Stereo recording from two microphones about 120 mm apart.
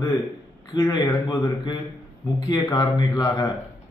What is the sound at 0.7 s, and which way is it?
A man's voice, 35° left (ahead or behind).